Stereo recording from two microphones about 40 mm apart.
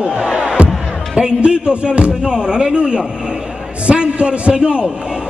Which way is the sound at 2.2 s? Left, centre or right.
Centre.